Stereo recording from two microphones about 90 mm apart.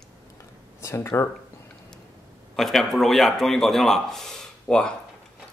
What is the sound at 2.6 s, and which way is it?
Speech, 5° left (ahead or behind).